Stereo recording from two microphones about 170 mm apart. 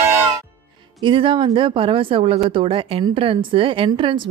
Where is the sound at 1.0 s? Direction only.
30° right (ahead or behind).